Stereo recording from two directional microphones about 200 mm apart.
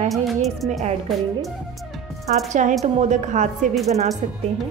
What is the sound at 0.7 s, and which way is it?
Speech, 35° right (ahead or behind).